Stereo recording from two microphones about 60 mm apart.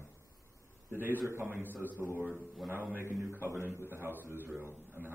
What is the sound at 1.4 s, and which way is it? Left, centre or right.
Speech, right.